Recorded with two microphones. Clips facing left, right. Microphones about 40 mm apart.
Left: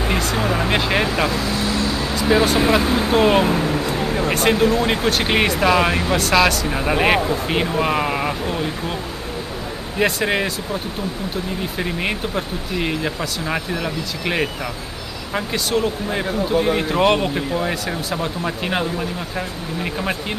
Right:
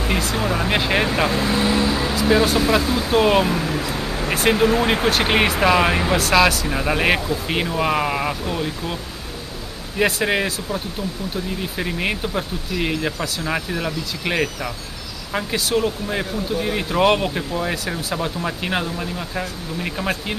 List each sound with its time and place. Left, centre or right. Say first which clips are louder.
0.1 s a sound: even; centre
0.4 s speech: left 1 dB; left
0.7 s speech: even; centre
1.3 s speech: right 2 dB; right
1.9 s speech: right 1 dB; centre
2.2 s speech: left 1 dB; centre
2.8 s speech: left 3 dB; left
3.1 s speech: even; centre
3.4 s a sound: left 3 dB; left
4.3 s speech: right 1 dB; centre
9.9 s speech: even; centre
11.8 s speech: even; centre